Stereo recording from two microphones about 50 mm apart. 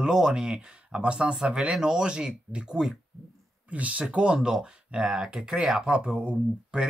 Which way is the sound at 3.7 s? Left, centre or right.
Right.